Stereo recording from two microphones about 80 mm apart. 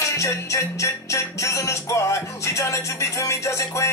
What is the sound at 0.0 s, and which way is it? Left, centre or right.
Music, left.